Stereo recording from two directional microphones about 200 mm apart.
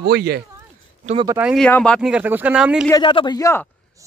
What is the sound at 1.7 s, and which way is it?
Speech, 5° left (ahead or behind).